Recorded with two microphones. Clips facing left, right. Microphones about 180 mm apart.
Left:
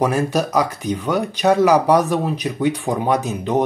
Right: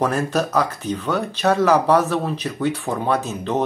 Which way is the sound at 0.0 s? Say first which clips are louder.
Left 2 dB; 10° left (ahead or behind).